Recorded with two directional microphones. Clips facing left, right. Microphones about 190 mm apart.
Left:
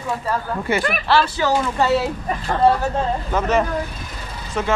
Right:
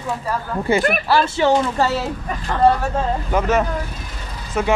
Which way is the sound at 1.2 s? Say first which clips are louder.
Right 3 dB; 25° right (ahead or behind).